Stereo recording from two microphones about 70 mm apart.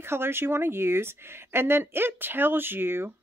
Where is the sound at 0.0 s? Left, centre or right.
Right.